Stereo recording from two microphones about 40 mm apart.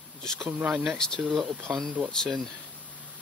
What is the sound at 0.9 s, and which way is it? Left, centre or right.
Speech, centre.